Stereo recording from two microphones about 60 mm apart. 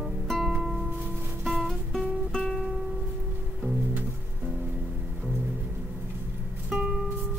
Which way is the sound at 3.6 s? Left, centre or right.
Right.